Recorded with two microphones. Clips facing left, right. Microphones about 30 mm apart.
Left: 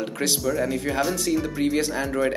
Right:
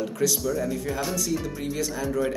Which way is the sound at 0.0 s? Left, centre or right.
Left.